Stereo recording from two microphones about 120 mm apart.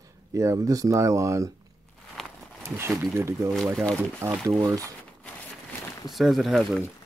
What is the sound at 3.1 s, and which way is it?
Speech, 20° right (ahead or behind).